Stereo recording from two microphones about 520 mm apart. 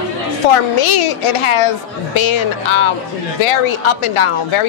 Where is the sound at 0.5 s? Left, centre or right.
Left.